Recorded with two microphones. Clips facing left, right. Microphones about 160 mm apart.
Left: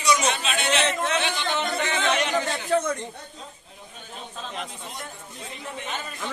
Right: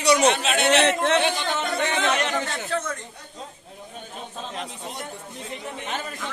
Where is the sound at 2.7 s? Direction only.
15° left (ahead or behind).